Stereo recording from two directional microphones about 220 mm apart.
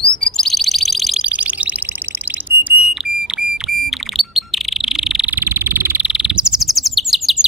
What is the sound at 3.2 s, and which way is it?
Bird, 5° right (ahead or behind).